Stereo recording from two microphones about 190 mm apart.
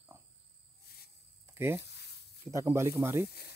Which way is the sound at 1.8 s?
60° left (ahead or behind).